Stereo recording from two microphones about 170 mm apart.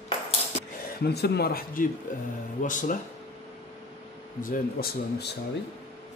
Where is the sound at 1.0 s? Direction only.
70° left (ahead or behind); by 3.0 s 50° left (ahead or behind).